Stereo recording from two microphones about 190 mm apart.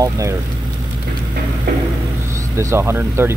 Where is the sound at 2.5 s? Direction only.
15° right (ahead or behind).